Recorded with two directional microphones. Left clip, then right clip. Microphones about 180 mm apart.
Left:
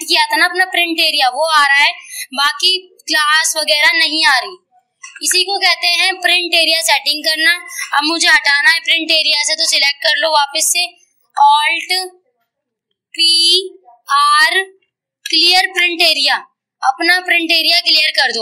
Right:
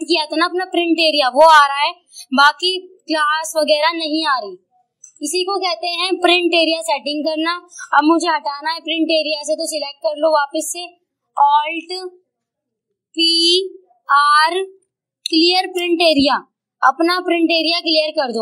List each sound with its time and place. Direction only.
0.0 s a woman's voice: 55° right (ahead or behind)
13.1 s a woman's voice: 55° right (ahead or behind)